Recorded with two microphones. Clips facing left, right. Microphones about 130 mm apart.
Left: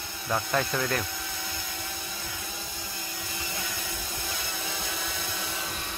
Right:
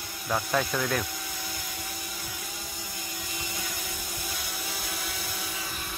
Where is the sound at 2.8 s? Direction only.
20° right (ahead or behind).